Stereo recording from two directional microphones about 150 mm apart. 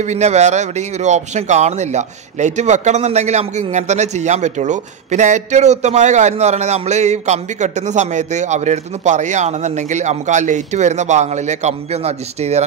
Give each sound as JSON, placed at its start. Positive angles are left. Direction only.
{"t": 0.0, "sound": "speech", "side_deg": -50}